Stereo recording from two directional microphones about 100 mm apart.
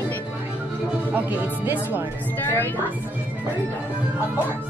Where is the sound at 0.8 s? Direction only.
15° right (ahead or behind).